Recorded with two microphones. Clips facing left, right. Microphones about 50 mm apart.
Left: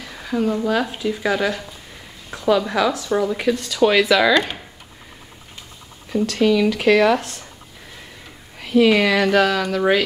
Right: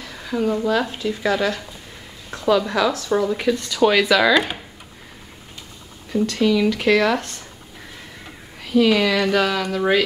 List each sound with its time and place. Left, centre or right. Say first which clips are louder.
0.0 s a sound: left 1 dB; centre
0.7 s speech: even; centre
6.2 s speech: left 1 dB; centre
8.6 s speech: left 2 dB; centre
9.5 s speech: left 2 dB; centre